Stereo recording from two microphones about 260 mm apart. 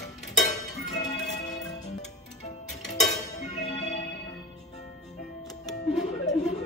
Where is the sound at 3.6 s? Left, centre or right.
Left.